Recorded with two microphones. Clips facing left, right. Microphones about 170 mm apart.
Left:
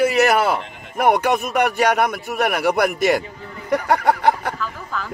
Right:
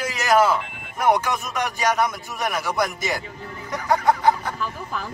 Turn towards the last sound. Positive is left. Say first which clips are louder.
# left 1 dB
turn(degrees=-15)  # may be behind; listen again after turning